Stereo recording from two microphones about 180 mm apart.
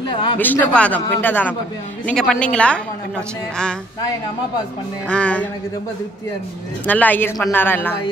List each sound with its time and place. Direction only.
0.1 s a sound: 25° left (ahead or behind)
0.4 s a man's voice: 10° left (ahead or behind)
5.0 s a man's voice: 5° left (ahead or behind)
6.9 s a man's voice: 10° left (ahead or behind)